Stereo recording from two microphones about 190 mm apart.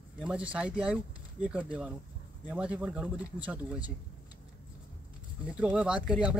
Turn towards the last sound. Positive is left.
turn(degrees=-5)  # may be behind; listen again after turning